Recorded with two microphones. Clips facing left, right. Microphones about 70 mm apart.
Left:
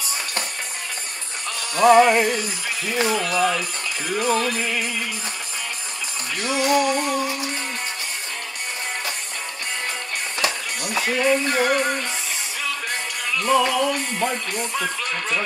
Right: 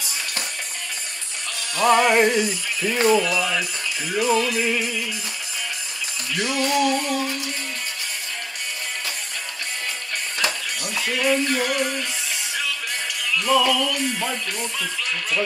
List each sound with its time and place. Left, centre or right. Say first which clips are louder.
2.0 s music: right 1 dB; centre
3.1 s music: right 2 dB; left
6.3 s music: left 2 dB; left
7.2 s music: left 2 dB; left
10.4 s music: left 1 dB; left
13.2 s music: even; left